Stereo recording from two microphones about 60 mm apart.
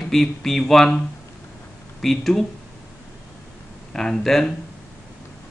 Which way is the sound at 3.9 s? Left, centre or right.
Centre.